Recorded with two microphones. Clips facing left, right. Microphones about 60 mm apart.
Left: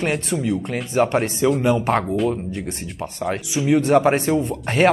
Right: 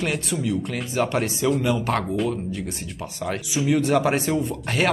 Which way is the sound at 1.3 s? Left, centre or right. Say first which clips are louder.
Left 3 dB; centre.